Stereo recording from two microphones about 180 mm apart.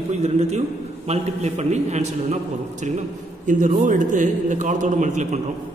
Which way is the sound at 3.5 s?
45° right (ahead or behind).